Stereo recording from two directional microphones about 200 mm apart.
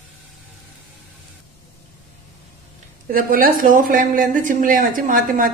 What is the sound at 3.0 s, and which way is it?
A woman's voice, 45° right (ahead or behind).